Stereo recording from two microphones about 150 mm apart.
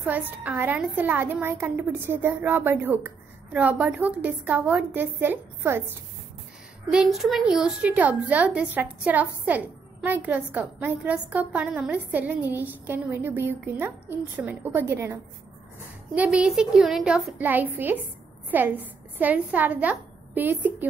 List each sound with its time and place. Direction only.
0.0 s a woman's voice: 10° right (ahead or behind)
6.9 s a woman's voice: 5° right (ahead or behind)
16.2 s a woman's voice: 10° right (ahead or behind)